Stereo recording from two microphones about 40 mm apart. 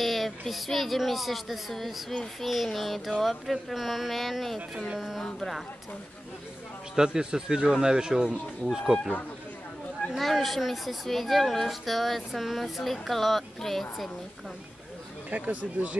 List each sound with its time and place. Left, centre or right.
0.0 s speech: centre
7.0 s speech: centre
10.1 s speech: centre
15.3 s speech: right